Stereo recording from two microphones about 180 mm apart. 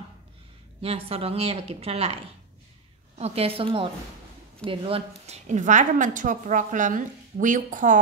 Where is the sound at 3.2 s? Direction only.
30° right (ahead or behind).